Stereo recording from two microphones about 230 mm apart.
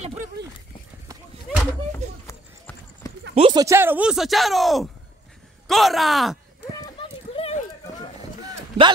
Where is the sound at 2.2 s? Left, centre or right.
Centre.